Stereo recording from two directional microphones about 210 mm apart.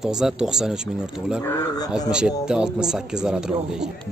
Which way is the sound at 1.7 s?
20° left (ahead or behind).